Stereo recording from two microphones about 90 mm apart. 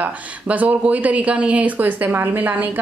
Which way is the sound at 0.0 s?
15° right (ahead or behind).